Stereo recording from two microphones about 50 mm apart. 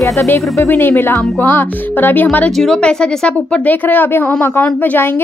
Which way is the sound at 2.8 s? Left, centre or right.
Centre.